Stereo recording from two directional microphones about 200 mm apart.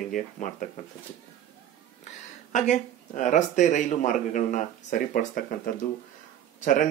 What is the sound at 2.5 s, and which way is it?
Speech, 40° left (ahead or behind).